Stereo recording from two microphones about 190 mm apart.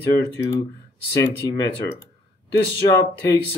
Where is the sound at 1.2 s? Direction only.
20° left (ahead or behind).